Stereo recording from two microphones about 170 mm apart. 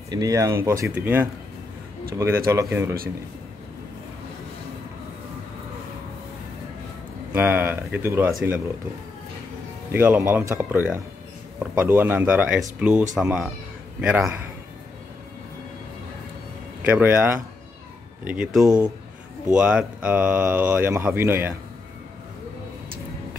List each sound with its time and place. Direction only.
0.1 s speech: 20° right (ahead or behind)
7.3 s speech: 10° right (ahead or behind)
9.8 s speech: 10° right (ahead or behind)
16.8 s speech: 10° right (ahead or behind)